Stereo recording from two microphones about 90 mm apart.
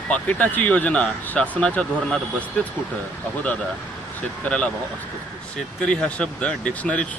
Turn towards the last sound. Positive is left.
turn(degrees=15)  # may be behind; listen again after turning